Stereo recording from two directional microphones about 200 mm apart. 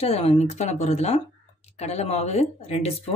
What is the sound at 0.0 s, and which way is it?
Speech, 30° left (ahead or behind).